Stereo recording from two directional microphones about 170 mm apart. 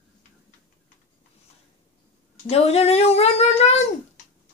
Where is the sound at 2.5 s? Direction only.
35° left (ahead or behind).